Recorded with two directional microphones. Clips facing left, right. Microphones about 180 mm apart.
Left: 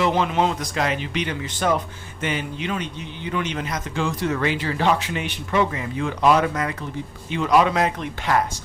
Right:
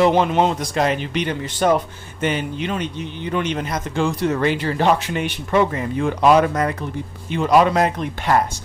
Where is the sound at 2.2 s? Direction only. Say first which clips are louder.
Right 5 dB; 50° right (ahead or behind).